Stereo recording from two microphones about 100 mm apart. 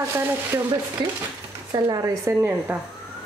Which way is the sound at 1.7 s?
35° right (ahead or behind).